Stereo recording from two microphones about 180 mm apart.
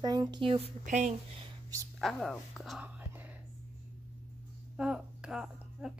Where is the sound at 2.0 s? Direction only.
Centre (ahead or behind).